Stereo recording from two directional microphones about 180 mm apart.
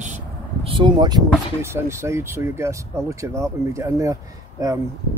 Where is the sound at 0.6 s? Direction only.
25° right (ahead or behind).